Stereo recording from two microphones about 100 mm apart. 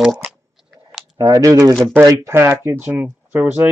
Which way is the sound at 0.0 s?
5° right (ahead or behind).